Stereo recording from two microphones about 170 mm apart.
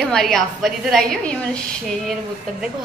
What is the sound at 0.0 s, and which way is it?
A woman's voice, centre (ahead or behind).